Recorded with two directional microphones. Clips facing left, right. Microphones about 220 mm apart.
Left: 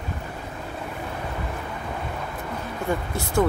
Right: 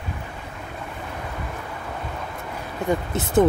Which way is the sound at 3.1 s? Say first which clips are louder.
Right 5 dB; 20° right (ahead or behind).